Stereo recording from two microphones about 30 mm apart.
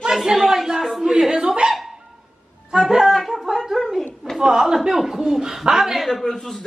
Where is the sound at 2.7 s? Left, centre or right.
Centre.